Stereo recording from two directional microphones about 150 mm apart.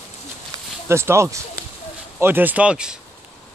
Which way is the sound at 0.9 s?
15° right (ahead or behind).